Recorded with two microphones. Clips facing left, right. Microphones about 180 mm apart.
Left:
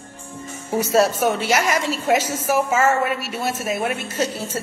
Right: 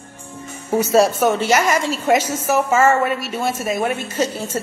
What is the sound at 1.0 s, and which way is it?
A woman's voice, 10° left (ahead or behind).